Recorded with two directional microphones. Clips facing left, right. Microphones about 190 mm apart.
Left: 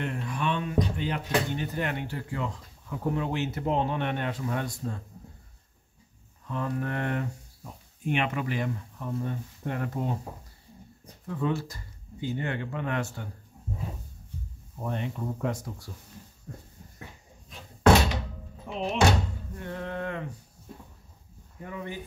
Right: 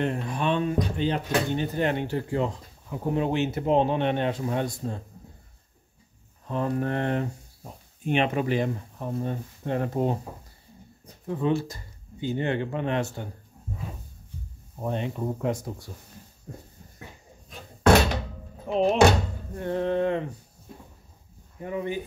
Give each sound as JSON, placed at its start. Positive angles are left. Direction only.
{"t": 0.0, "sound": "speech", "side_deg": -30}
{"t": 6.4, "sound": "speech", "side_deg": -35}
{"t": 11.2, "sound": "speech", "side_deg": -20}
{"t": 14.9, "sound": "speech", "side_deg": -20}
{"t": 18.7, "sound": "speech", "side_deg": -40}
{"t": 21.5, "sound": "speech", "side_deg": -20}